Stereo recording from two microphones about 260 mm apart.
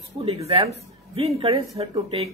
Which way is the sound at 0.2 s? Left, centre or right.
Right.